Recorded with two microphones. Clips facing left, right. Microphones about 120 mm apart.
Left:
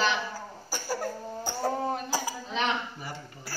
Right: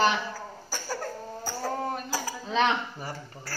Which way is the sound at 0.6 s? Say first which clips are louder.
Left 2 dB; 10° left (ahead or behind).